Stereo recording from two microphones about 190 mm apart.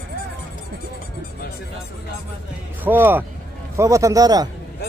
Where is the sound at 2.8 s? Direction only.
10° right (ahead or behind).